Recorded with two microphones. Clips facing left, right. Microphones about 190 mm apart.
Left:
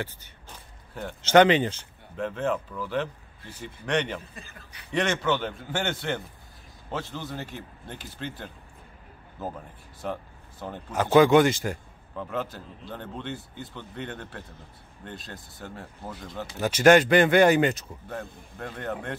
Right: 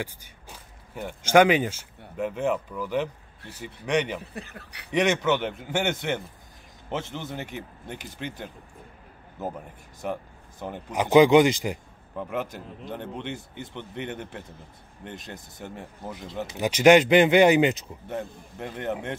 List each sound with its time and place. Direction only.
0.0 s a man's voice: 10° right (ahead or behind)
4.2 s speech: 70° right (ahead or behind)
4.9 s a man's voice: 15° right (ahead or behind)
10.0 s a man's voice: 15° right (ahead or behind)